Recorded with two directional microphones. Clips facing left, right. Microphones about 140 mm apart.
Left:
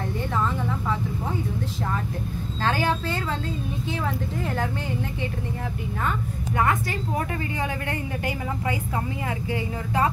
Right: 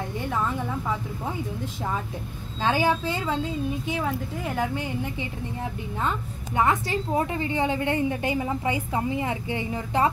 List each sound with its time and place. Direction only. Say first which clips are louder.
2.6 s speech: right 2 dB; 15° right (ahead or behind)
6.0 s a woman's voice: left 1 dB; 20° right (ahead or behind)